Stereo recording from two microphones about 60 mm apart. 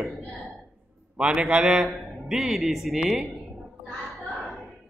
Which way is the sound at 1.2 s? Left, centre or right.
Centre.